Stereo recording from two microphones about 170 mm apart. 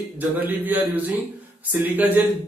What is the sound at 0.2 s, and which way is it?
Speech, 10° right (ahead or behind).